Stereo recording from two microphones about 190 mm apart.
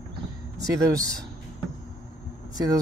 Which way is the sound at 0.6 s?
20° right (ahead or behind).